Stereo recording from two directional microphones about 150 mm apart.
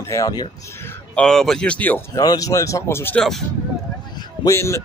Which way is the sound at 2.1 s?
25° left (ahead or behind).